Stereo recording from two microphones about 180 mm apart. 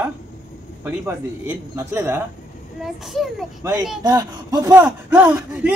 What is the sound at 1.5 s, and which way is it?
Speech, 15° right (ahead or behind).